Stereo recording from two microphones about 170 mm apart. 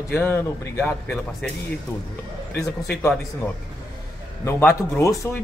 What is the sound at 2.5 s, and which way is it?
Speech, 10° left (ahead or behind).